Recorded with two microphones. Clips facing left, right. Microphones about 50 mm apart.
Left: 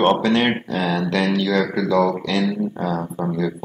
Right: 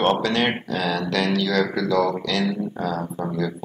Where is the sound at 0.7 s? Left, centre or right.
Centre.